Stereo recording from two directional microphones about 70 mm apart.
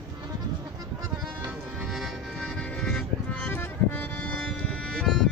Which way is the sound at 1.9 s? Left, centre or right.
Centre.